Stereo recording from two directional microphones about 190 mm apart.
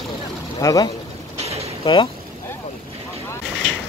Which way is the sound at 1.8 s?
30° left (ahead or behind).